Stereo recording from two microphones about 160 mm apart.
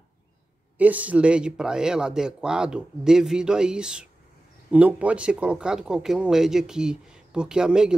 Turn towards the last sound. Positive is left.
turn(degrees=-5)  # may be behind; listen again after turning